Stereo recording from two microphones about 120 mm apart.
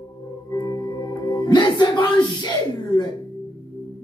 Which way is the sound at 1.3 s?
40° left (ahead or behind).